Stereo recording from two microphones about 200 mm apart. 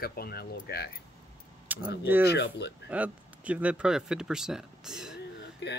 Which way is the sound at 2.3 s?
60° left (ahead or behind).